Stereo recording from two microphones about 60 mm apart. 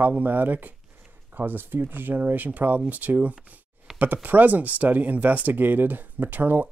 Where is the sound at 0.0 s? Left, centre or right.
Right.